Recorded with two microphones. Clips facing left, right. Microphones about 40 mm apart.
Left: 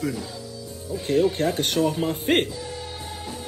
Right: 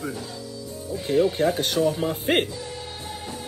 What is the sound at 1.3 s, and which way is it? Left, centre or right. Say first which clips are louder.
Speech: right 2 dB; right.